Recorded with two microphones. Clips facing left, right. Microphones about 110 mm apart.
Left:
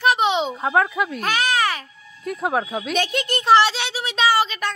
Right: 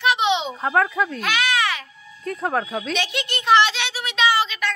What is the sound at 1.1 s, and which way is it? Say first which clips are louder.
Baby cry: left 1 dB; 40° left (ahead or behind).